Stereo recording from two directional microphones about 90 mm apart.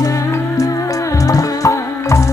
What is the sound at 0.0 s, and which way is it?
Music, 40° left (ahead or behind).